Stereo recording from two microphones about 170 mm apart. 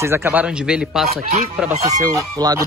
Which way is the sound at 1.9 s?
20° right (ahead or behind).